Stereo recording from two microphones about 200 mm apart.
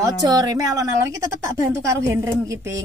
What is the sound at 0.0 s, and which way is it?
A woman's voice, 20° right (ahead or behind).